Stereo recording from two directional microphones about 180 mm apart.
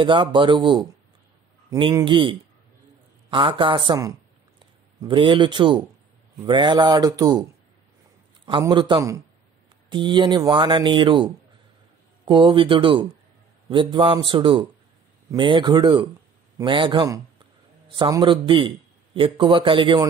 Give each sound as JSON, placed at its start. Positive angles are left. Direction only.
{"t": 0.0, "sound": "speech", "side_deg": -25}
{"t": 8.5, "sound": "speech", "side_deg": -25}
{"t": 12.3, "sound": "a man's voice", "side_deg": -30}